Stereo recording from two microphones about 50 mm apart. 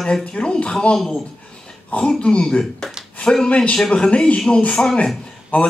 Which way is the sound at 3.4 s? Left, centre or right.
Left.